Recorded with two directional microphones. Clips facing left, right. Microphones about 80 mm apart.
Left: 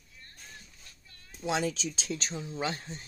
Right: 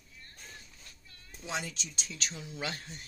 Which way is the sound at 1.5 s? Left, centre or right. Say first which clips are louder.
Left 8 dB; left.